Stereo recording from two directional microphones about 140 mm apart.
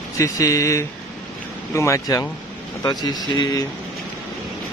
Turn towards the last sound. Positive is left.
turn(degrees=30)  # may be behind; listen again after turning